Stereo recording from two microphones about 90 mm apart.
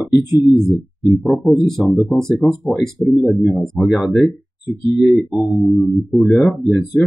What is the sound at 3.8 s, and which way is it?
Speech, 5° right (ahead or behind).